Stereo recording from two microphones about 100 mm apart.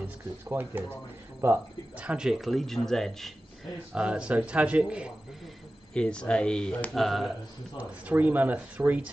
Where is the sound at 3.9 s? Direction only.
10° right (ahead or behind).